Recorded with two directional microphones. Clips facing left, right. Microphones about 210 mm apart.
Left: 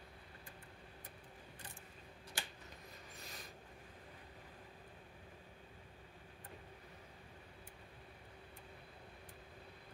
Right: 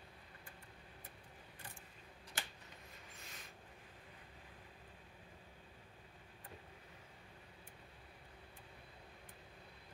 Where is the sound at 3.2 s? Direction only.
35° left (ahead or behind).